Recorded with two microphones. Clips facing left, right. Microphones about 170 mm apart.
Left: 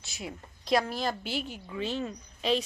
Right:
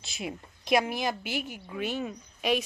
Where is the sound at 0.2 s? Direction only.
15° right (ahead or behind).